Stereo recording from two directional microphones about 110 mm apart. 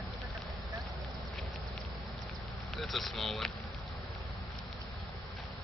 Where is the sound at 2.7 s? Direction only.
Centre (ahead or behind).